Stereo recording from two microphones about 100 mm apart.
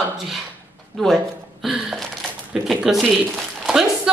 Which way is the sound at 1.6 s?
5° right (ahead or behind).